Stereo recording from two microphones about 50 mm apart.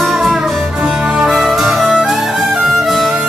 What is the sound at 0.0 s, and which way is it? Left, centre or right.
Music, centre.